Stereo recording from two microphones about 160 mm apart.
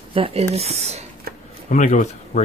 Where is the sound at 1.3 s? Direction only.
70° right (ahead or behind).